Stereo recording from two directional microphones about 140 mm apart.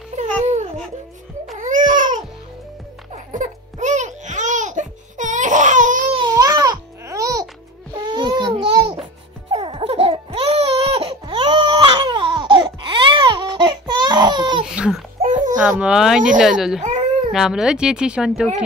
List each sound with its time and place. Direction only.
0.1 s babbling: 60° right (ahead or behind)
1.6 s baby cry: 65° right (ahead or behind)
3.3 s a sound: 65° right (ahead or behind)
6.1 s music: 25° right (ahead or behind)
7.9 s babbling: 30° right (ahead or behind)
9.5 s laughter: 40° right (ahead or behind)
14.7 s baby cry: 5° right (ahead or behind)
15.2 s babbling: 65° right (ahead or behind)
15.5 s a sound: 5° right (ahead or behind)
16.3 s speech: 5° right (ahead or behind)